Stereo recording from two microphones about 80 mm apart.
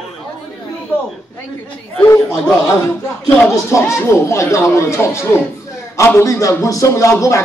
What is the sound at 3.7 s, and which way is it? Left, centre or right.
Speech, left.